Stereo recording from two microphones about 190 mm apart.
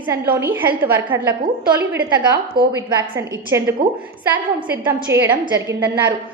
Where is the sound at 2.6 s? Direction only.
55° right (ahead or behind).